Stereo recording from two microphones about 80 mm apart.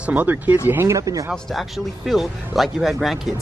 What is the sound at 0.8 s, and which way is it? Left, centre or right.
Speech, right.